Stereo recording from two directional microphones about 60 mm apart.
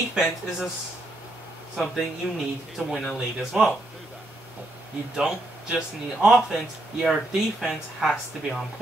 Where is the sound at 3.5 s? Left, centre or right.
Centre.